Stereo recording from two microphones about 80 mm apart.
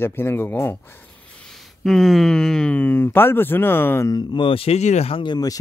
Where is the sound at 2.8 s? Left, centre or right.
Left.